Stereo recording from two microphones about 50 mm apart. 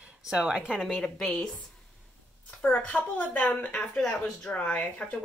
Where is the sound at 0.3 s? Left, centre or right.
Centre.